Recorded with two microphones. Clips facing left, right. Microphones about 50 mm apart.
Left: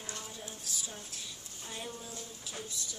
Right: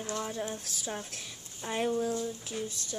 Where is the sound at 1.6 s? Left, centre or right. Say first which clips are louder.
Right 14 dB; right.